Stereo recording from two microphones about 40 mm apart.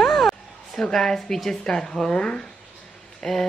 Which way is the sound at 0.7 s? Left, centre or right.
Centre.